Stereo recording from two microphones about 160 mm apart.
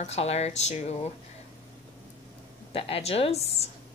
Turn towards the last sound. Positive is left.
turn(degrees=40)  # may be behind; listen again after turning